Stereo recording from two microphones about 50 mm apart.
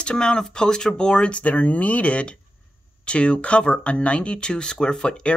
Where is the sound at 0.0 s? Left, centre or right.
Centre.